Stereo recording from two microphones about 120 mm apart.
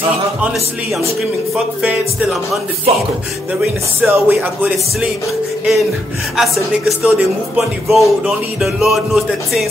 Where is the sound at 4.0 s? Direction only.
15° right (ahead or behind).